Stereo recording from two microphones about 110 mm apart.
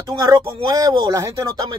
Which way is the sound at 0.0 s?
35° right (ahead or behind).